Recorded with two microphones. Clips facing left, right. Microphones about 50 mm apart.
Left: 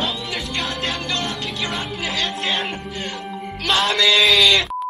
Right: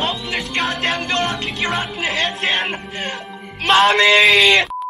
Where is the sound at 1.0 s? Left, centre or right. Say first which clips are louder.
Right 4 dB; right.